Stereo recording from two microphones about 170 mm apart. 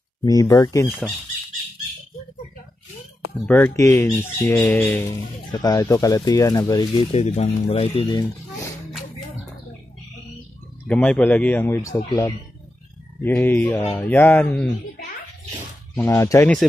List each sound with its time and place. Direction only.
0.2 s speech: 20° left (ahead or behind)
3.4 s speech: 10° left (ahead or behind)
7.1 s speech: 40° left (ahead or behind)
10.9 s speech: 5° left (ahead or behind)
16.0 s speech: 15° left (ahead or behind)